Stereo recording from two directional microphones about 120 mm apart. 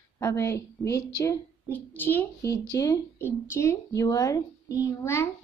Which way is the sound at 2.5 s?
30° left (ahead or behind).